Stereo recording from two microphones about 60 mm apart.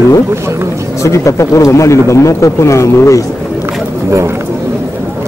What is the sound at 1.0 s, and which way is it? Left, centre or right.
Speech, left.